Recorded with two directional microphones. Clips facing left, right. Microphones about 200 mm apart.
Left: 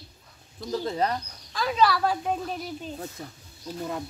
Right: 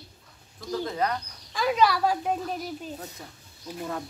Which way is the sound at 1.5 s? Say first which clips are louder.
Even; 10° right (ahead or behind).